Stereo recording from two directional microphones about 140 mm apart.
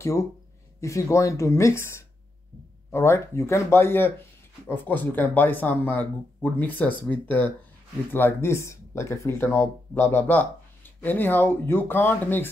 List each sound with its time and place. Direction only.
0.0 s speech: 20° left (ahead or behind)